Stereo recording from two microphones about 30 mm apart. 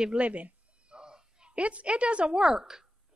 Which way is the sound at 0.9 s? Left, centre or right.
Right.